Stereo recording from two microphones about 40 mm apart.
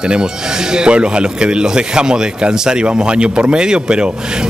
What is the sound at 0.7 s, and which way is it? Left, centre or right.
Speech, right.